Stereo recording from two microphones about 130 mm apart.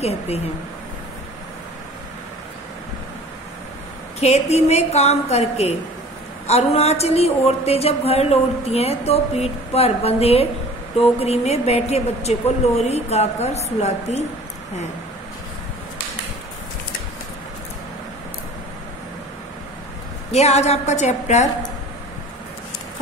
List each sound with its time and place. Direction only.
0.0 s a woman's voice: 55° left (ahead or behind)
4.2 s a woman's voice: 55° left (ahead or behind)
20.2 s a woman's voice: 55° left (ahead or behind)